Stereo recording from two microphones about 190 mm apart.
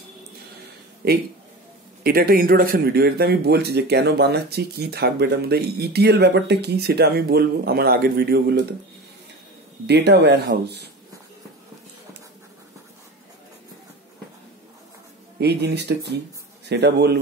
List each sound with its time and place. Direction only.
1.0 s speech: 55° right (ahead or behind)
9.8 s speech: 60° right (ahead or behind)
15.3 s speech: 60° right (ahead or behind)